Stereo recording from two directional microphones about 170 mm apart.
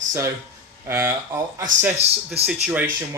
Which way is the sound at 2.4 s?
35° right (ahead or behind).